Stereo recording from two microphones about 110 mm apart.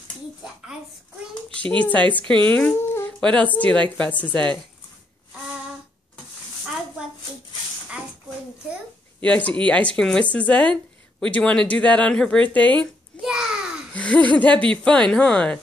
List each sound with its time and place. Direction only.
1.5 s a woman's voice: 10° left (ahead or behind)
9.2 s a woman's voice: 10° left (ahead or behind)
13.2 s a sound: 5° right (ahead or behind)
13.9 s a woman's voice: 15° left (ahead or behind)